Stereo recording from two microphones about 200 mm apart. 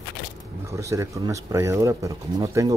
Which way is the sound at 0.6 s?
15° right (ahead or behind).